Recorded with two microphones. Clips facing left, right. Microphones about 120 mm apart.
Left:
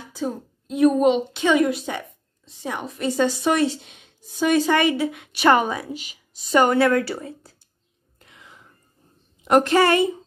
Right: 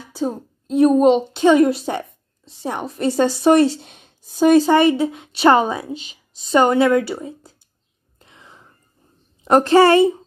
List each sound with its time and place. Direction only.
0.1 s a woman's voice: 30° right (ahead or behind)
8.2 s whispering: 25° right (ahead or behind)
9.4 s a woman's voice: 30° right (ahead or behind)